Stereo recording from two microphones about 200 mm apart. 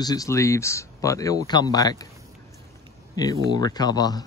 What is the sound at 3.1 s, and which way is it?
Speech, 20° left (ahead or behind).